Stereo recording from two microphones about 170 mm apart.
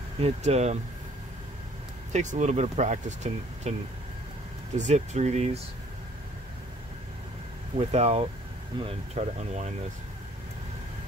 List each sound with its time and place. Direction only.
0.2 s speech: 40° right (ahead or behind)
2.1 s speech: 45° right (ahead or behind)
4.7 s speech: 45° right (ahead or behind)
7.7 s speech: 35° right (ahead or behind)